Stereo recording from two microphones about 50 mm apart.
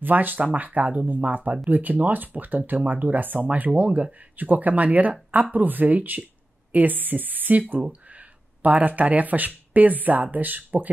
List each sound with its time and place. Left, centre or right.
0.0 s speech: right